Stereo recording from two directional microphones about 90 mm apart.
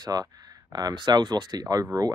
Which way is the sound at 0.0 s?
50° right (ahead or behind).